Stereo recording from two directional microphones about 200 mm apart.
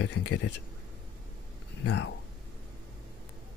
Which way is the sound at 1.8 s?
65° left (ahead or behind).